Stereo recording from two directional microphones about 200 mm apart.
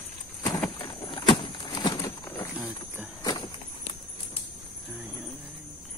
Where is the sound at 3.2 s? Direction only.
20° left (ahead or behind).